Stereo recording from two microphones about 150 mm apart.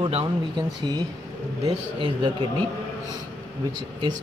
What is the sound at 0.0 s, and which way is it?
Speech, 35° right (ahead or behind).